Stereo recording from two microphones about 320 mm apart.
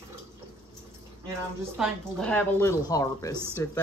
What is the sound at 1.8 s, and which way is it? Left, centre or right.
A woman's voice, centre.